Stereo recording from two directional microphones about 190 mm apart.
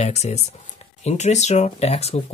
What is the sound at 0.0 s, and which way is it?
Speech, 35° left (ahead or behind).